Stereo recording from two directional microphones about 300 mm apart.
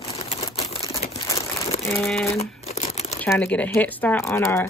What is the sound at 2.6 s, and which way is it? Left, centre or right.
Crumpling, left.